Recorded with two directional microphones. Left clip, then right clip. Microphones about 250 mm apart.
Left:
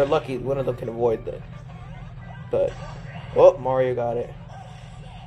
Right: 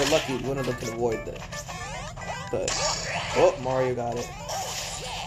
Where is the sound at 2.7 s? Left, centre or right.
Right.